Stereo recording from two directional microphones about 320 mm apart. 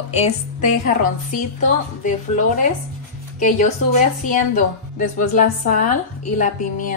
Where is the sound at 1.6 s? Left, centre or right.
Left.